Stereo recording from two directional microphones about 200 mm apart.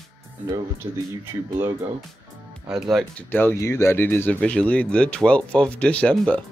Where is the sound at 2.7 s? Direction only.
Centre (ahead or behind).